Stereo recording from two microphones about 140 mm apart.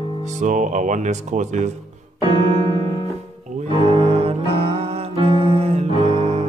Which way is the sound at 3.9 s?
45° right (ahead or behind).